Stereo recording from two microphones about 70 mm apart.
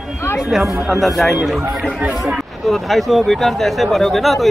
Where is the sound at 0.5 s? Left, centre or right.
Centre.